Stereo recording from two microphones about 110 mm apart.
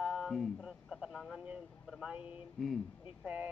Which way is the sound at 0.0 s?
5° right (ahead or behind).